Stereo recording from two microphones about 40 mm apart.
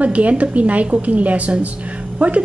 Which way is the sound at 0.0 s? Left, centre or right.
Right.